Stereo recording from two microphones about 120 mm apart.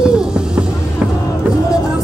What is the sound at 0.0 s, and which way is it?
Music, 5° right (ahead or behind).